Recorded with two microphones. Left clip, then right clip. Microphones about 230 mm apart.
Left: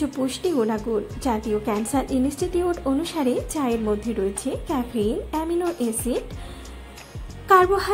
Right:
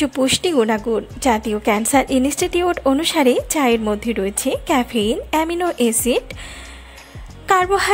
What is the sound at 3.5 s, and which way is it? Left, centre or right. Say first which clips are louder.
Speech: right 7 dB; right.